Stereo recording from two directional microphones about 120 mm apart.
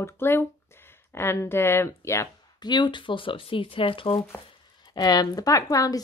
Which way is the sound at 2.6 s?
40° left (ahead or behind).